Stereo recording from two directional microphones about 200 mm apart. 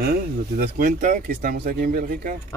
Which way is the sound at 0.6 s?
40° right (ahead or behind).